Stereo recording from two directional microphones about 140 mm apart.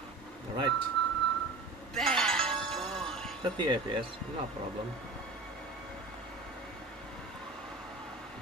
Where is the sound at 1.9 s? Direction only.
5° left (ahead or behind).